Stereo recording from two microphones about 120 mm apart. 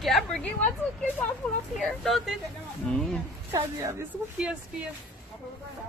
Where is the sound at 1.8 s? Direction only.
Centre (ahead or behind).